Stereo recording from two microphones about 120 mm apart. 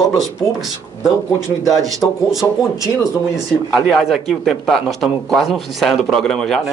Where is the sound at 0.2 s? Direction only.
Centre (ahead or behind).